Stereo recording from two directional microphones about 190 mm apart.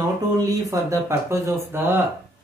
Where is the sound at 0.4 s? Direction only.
20° right (ahead or behind).